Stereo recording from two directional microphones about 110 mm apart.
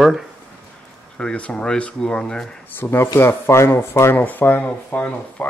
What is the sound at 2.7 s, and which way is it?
Speech, 20° left (ahead or behind).